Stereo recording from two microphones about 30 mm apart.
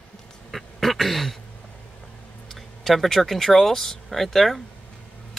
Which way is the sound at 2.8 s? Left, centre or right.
Centre.